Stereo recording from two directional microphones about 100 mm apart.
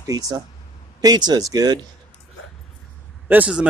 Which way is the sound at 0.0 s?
35° right (ahead or behind).